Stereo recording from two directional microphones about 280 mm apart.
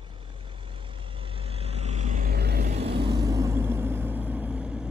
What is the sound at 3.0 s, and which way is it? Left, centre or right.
Vehicle, centre.